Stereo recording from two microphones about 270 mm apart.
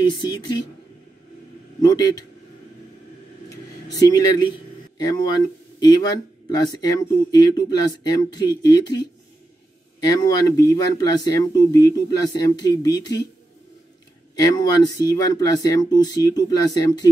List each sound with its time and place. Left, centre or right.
0.0 s speech: centre
1.8 s speech: centre
3.4 s a sound: centre
4.9 s speech: centre
10.0 s speech: centre
14.3 s speech: centre